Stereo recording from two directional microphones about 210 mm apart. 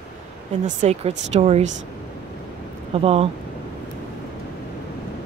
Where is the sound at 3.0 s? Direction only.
30° right (ahead or behind).